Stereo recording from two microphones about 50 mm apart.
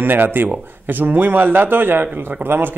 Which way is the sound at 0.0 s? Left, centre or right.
Right.